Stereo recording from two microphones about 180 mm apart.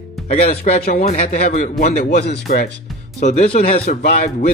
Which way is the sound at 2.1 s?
60° left (ahead or behind).